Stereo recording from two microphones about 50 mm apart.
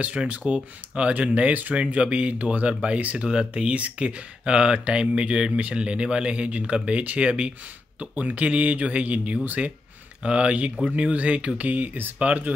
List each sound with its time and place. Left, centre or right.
0.0 s speech: right